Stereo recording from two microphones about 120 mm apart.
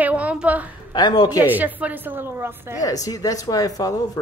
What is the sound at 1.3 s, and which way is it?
A woman's voice, 15° right (ahead or behind).